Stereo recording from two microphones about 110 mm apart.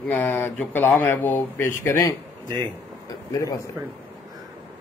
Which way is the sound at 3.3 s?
30° left (ahead or behind).